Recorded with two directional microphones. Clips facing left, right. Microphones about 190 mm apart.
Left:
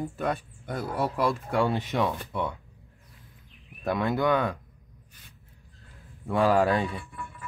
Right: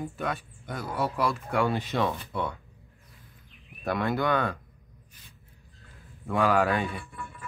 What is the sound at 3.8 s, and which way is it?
Speech, 20° left (ahead or behind).